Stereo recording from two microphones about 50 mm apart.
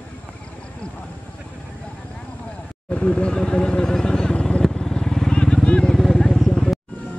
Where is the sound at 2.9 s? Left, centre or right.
Left.